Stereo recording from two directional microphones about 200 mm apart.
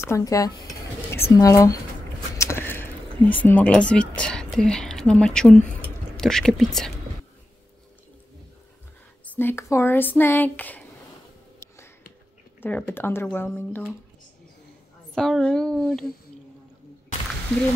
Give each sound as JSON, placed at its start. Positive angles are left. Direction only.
{"t": 0.0, "sound": "speech", "side_deg": 15}
{"t": 2.3, "sound": "a sound", "side_deg": 15}
{"t": 3.4, "sound": "speech", "side_deg": 5}
{"t": 9.2, "sound": "speech", "side_deg": 10}
{"t": 12.6, "sound": "speech", "side_deg": 10}
{"t": 15.1, "sound": "speech", "side_deg": 0}